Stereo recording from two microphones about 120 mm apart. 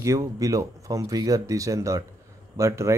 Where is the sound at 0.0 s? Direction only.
25° right (ahead or behind).